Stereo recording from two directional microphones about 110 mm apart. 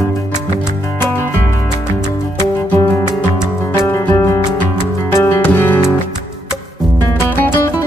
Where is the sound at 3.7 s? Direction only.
25° left (ahead or behind).